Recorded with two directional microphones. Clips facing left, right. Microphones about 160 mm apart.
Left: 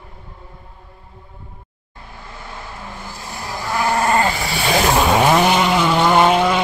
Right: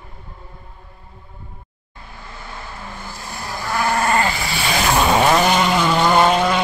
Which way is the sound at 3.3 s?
15° left (ahead or behind).